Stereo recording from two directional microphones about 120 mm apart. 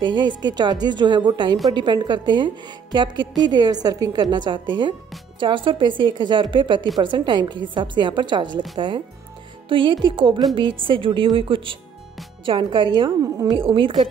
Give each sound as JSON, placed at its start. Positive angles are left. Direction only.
{"t": 0.0, "sound": "a woman's voice", "side_deg": -40}
{"t": 13.2, "sound": "a woman's voice", "side_deg": -30}
{"t": 13.6, "sound": "a woman's voice", "side_deg": -45}